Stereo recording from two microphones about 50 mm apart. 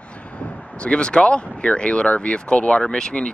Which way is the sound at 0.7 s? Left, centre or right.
Left.